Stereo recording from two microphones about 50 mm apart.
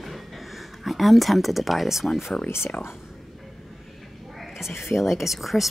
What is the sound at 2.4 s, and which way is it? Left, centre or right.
Speech, left.